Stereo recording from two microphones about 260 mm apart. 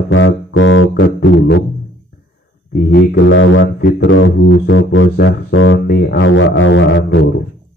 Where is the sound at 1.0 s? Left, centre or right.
Left.